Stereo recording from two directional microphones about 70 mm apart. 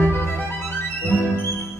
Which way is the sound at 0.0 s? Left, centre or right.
Left.